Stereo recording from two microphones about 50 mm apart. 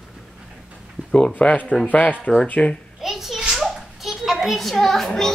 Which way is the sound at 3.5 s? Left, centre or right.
Centre.